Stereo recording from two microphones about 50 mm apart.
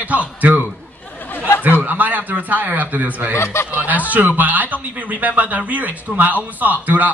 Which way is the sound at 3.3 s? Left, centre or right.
Left.